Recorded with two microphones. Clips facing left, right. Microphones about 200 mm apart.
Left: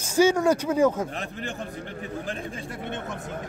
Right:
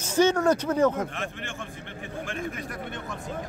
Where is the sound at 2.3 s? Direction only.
30° left (ahead or behind).